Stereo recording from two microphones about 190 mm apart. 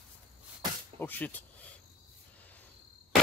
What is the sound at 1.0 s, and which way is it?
Speech, 10° left (ahead or behind).